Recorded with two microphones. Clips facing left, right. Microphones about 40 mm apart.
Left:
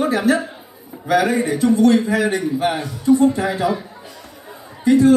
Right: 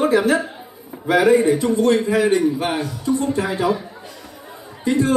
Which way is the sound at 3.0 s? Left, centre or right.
Left.